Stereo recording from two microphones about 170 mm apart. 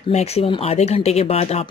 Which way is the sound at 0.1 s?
40° left (ahead or behind).